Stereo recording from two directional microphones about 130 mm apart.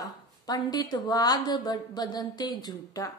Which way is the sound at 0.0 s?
30° left (ahead or behind).